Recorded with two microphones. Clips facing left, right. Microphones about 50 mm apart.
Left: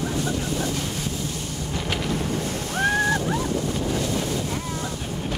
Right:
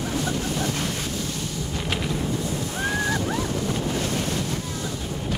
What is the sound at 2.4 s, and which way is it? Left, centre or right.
Ocean, left.